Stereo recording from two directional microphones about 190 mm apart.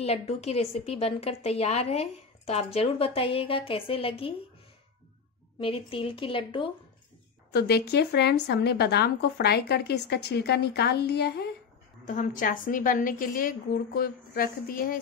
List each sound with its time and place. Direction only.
0.0 s a woman's voice: 30° left (ahead or behind)
5.6 s a woman's voice: 30° left (ahead or behind)
7.5 s speech: 55° left (ahead or behind)
12.0 s a woman's voice: 40° left (ahead or behind)